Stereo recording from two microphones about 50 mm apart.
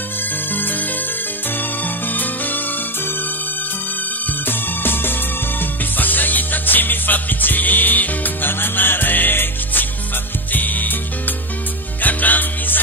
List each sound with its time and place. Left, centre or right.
0.5 s music: left
2.0 s music: left
4.5 s music: left